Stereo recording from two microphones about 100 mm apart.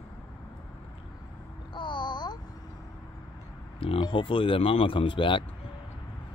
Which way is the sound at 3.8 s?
60° left (ahead or behind).